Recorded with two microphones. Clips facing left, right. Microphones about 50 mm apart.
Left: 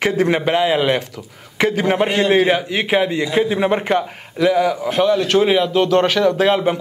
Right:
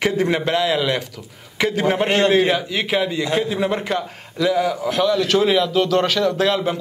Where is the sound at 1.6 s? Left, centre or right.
Centre.